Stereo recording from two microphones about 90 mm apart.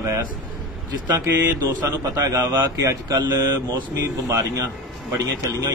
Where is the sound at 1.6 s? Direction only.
40° right (ahead or behind).